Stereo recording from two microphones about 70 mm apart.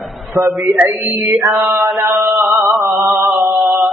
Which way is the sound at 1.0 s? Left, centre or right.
Centre.